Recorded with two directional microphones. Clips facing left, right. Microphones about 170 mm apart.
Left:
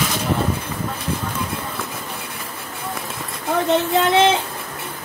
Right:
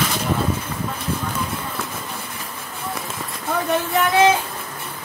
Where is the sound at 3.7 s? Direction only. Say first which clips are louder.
Left 3 dB; 25° left (ahead or behind).